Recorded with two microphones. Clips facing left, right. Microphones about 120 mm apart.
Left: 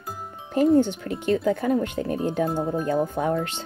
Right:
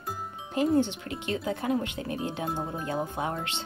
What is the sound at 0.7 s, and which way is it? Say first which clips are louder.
Speech: left 5 dB; 45° left (ahead or behind).